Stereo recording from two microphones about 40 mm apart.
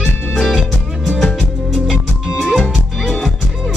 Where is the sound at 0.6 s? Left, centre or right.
Centre.